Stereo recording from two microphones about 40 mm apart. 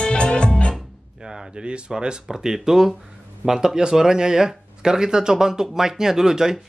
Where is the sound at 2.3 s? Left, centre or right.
Centre.